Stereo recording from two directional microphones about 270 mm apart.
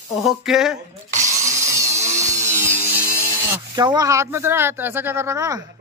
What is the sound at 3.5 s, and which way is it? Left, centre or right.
Speech, centre.